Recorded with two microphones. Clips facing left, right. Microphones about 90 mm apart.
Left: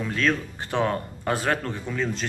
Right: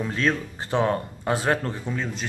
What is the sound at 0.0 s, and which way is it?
Speech, 25° right (ahead or behind).